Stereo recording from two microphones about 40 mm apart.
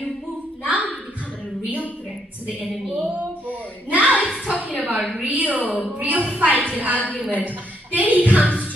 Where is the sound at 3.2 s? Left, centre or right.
Right.